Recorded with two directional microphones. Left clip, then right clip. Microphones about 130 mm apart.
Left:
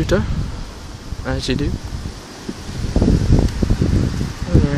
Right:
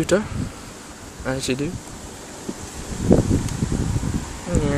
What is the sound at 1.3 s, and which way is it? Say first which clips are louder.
Speech: left 2 dB; 10° right (ahead or behind).